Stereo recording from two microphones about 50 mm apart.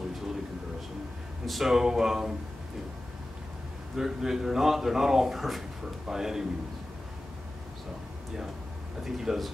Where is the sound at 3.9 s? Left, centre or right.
Centre.